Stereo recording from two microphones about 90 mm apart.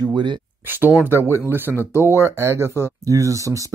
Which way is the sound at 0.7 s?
20° right (ahead or behind).